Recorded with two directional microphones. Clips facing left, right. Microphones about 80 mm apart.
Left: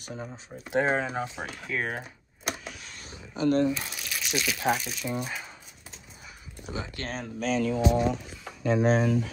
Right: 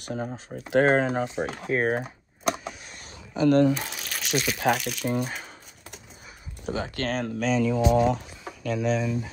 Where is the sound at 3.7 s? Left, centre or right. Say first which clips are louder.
Right 3 dB; right.